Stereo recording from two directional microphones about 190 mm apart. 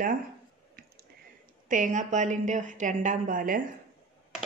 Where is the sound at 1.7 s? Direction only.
40° right (ahead or behind).